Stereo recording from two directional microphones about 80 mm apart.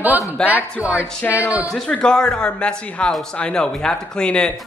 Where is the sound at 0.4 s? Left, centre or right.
Centre.